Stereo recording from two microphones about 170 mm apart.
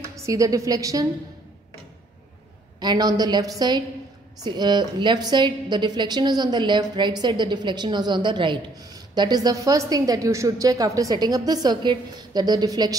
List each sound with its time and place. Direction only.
0.1 s a woman's voice: 20° right (ahead or behind)
2.8 s a woman's voice: 25° right (ahead or behind)